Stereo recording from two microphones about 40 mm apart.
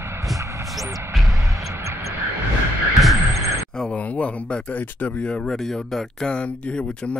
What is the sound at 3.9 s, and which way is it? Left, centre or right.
Speech, left.